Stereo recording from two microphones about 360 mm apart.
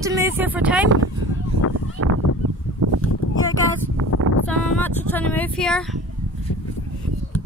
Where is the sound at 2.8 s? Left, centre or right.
Right.